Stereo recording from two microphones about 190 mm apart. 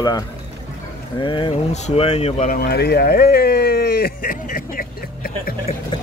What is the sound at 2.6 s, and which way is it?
Speech, 55° left (ahead or behind).